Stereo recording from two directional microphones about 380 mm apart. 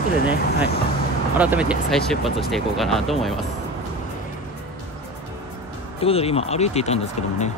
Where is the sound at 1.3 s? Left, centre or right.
Centre.